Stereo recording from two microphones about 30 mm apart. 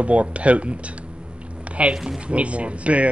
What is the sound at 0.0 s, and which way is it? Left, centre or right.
Speech, right.